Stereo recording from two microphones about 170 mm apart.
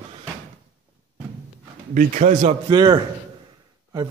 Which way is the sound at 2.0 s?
45° right (ahead or behind).